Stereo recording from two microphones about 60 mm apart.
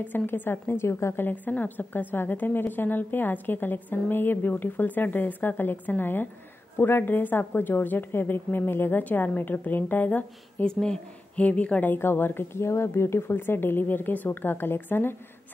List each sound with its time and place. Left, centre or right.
0.0 s a woman's voice: left
1.2 s a woman's voice: left
10.7 s speech: centre
11.3 s a woman's voice: left
11.9 s a woman's voice: left